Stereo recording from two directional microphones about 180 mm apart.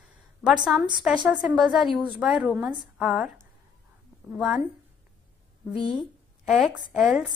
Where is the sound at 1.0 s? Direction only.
5° right (ahead or behind).